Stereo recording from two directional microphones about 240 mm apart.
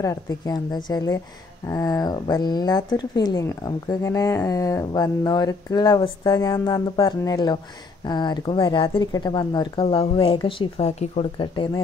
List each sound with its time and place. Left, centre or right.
0.0 s speech: centre